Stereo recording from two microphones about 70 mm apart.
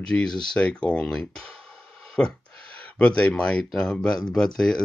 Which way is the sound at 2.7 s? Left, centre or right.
Centre.